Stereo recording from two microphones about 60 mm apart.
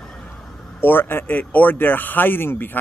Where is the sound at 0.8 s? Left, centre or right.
Left.